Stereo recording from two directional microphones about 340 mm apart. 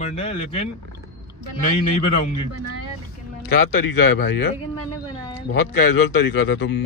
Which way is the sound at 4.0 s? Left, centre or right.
Left.